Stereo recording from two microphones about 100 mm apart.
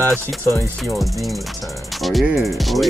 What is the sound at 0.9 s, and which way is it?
Speech, centre (ahead or behind).